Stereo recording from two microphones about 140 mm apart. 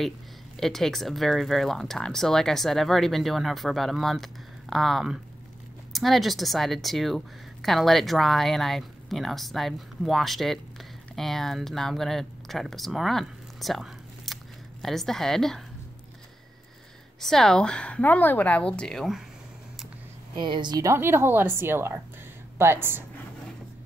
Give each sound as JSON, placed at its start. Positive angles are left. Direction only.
{"t": 0.6, "sound": "a woman's voice", "side_deg": 5}
{"t": 17.2, "sound": "a woman's voice", "side_deg": 5}
{"t": 20.3, "sound": "speech", "side_deg": -35}